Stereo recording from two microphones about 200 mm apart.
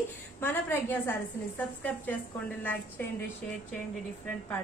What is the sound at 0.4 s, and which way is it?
A woman's voice, 10° left (ahead or behind).